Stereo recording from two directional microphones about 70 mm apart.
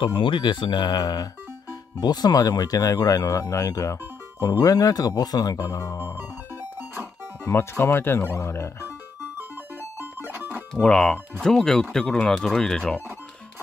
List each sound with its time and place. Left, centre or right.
0.1 s speech: left
2.0 s speech: left
7.4 s speech: left
9.9 s music: right
10.7 s speech: centre